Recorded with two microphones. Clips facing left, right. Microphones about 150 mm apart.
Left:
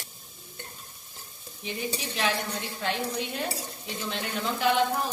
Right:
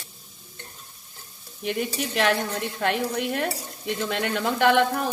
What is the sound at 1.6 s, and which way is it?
Stir, 65° right (ahead or behind).